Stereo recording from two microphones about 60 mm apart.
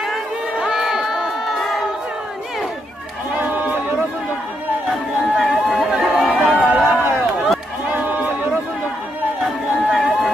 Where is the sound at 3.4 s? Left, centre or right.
Right.